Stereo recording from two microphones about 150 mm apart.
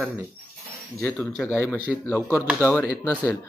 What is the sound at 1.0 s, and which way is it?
Speech, 5° left (ahead or behind).